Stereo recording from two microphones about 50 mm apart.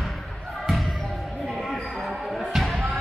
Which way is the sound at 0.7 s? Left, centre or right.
Centre.